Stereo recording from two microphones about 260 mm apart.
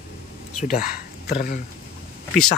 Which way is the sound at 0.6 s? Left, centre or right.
Left.